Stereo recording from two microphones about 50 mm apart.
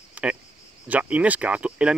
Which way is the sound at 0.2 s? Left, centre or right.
Right.